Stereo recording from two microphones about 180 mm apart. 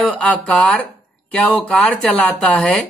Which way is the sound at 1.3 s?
5° left (ahead or behind).